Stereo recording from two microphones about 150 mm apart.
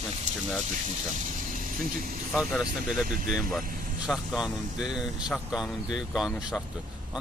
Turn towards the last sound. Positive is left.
turn(degrees=0)  # may be behind; listen again after turning